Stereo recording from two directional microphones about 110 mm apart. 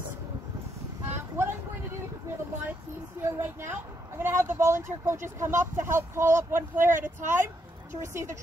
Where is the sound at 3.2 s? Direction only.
20° right (ahead or behind).